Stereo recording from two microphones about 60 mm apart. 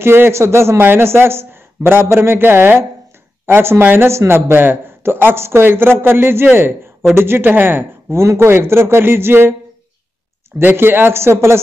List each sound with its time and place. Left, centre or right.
0.0 s speech: right
8.2 s speech: right
10.6 s speech: right